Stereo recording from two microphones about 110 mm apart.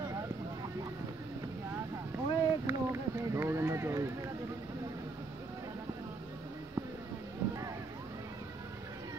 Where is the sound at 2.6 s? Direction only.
25° right (ahead or behind).